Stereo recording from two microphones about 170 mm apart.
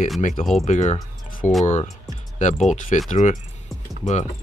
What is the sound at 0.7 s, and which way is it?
Speech, 45° left (ahead or behind).